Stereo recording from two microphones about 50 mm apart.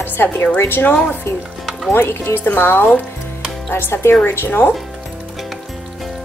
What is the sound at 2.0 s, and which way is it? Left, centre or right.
A woman's voice, left.